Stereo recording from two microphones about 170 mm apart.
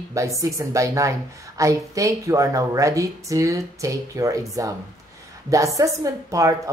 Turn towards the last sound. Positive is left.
turn(degrees=-20)  # may be behind; listen again after turning